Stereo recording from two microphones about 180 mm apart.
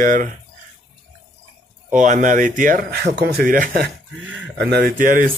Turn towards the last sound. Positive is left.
turn(degrees=-50)  # may be behind; listen again after turning